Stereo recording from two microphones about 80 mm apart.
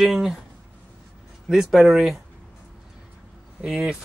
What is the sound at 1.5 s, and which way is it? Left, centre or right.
Speech, centre.